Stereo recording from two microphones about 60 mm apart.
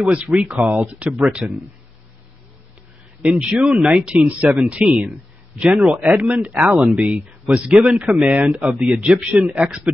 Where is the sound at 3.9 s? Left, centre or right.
Centre.